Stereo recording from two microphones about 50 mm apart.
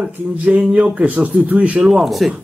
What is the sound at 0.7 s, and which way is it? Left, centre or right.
Speech, right.